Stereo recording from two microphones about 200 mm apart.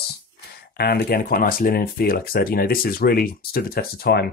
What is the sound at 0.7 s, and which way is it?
Speech, 50° left (ahead or behind).